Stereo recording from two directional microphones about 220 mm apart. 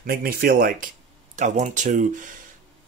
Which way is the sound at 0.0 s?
40° right (ahead or behind).